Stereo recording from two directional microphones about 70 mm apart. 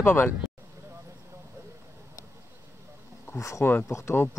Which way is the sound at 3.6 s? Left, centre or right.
Left.